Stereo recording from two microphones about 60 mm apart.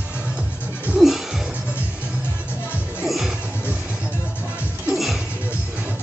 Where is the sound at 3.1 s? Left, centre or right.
Centre.